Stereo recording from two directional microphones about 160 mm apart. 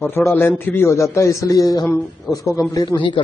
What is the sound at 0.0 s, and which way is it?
A man's voice, 15° left (ahead or behind).